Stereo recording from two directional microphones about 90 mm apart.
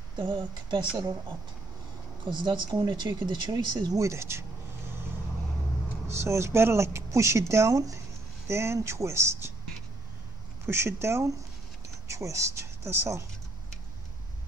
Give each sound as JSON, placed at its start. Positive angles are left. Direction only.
{"t": 0.2, "sound": "speech", "side_deg": -55}
{"t": 2.2, "sound": "speech", "side_deg": -60}
{"t": 4.0, "sound": "vehicle", "side_deg": -30}
{"t": 6.0, "sound": "speech", "side_deg": -30}
{"t": 10.7, "sound": "speech", "side_deg": -30}